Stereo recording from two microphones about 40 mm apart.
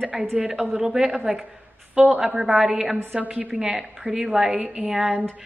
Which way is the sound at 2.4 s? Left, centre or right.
Centre.